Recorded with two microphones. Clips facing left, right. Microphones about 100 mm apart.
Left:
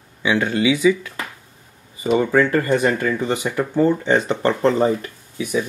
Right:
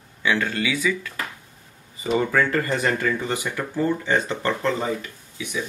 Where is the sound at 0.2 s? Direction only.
15° left (ahead or behind).